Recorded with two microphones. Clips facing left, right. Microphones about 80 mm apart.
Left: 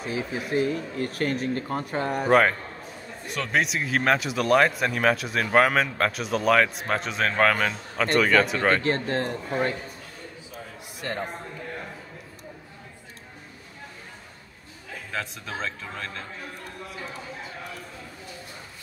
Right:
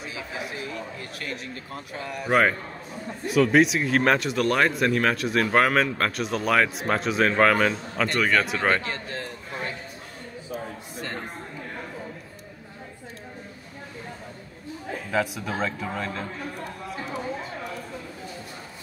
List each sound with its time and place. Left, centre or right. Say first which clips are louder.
0.0 s speech: left 4 dB; left
2.2 s speech: left 1 dB; centre
8.8 s a man's voice: left 7 dB; left
15.0 s a man's voice: right 7 dB; centre